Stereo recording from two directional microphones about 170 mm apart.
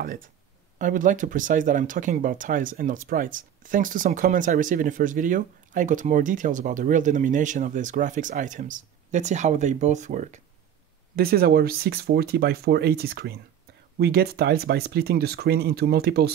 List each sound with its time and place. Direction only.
0.7 s speech: 50° right (ahead or behind)
11.1 s speech: 65° right (ahead or behind)